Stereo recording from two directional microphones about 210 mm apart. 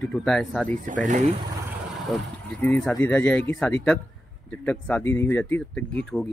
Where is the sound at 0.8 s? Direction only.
40° right (ahead or behind).